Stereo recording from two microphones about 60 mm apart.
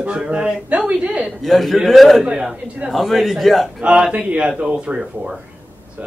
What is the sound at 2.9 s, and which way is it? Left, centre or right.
Speech, centre.